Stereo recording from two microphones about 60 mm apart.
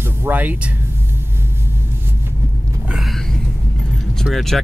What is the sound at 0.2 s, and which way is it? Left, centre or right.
Speech, right.